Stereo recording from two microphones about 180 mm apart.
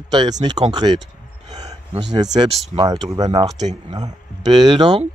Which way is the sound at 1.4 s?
20° right (ahead or behind).